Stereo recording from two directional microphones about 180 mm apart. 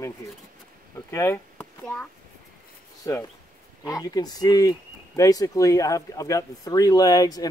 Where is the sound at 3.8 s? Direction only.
20° left (ahead or behind).